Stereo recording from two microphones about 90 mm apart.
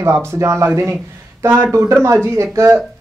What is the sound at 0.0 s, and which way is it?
A man's voice, 30° right (ahead or behind).